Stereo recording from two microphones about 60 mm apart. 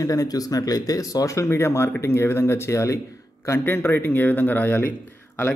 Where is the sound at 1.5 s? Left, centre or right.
Left.